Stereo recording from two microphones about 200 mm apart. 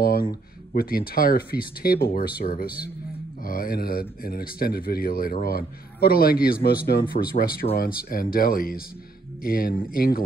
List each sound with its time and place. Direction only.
0.0 s speech: 45° left (ahead or behind)